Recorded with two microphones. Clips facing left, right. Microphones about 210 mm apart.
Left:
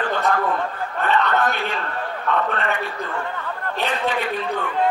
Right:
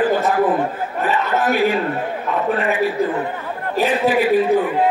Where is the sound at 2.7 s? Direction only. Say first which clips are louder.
Right 8 dB; 5° right (ahead or behind).